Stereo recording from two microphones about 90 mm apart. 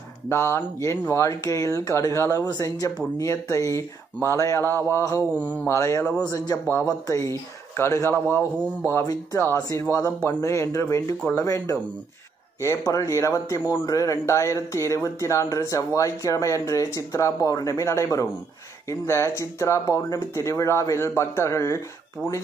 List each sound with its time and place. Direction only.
0.3 s speech: 25° left (ahead or behind)
2.4 s speech: 45° left (ahead or behind)
3.2 s speech: 35° left (ahead or behind)
5.4 s speech: 15° left (ahead or behind)
5.7 s speech: 35° left (ahead or behind)
6.2 s speech: 45° left (ahead or behind)
6.9 s speech: 35° left (ahead or behind)
9.0 s speech: 45° left (ahead or behind)
9.4 s speech: 30° left (ahead or behind)